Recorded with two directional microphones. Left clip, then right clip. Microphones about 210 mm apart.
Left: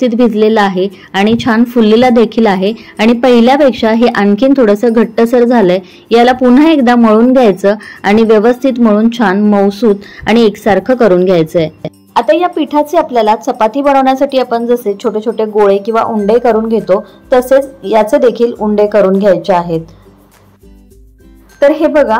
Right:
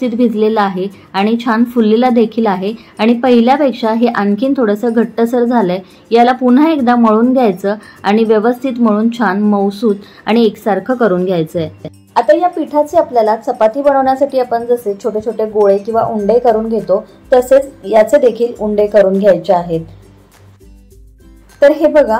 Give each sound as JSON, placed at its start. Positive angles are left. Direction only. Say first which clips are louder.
{"t": 0.0, "sound": "a woman's voice", "louder": "left 4 dB", "side_deg": 25}
{"t": 21.5, "sound": "a woman's voice", "louder": "even", "side_deg": 20}